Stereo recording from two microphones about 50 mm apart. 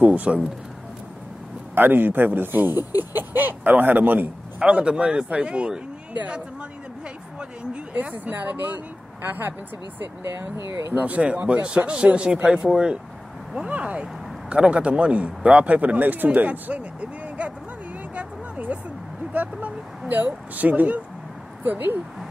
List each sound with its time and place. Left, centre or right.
0.0 s a man's voice: right
1.8 s speech: right
4.6 s a man's voice: right
7.3 s speech: right
10.9 s a man's voice: right; by 13.0 s centre
13.7 s a man's voice: right
20.1 s speech: right
21.6 s speech: right